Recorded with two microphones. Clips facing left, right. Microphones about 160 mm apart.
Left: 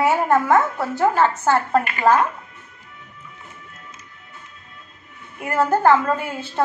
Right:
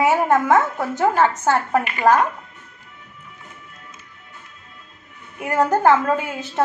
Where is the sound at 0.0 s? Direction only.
20° right (ahead or behind).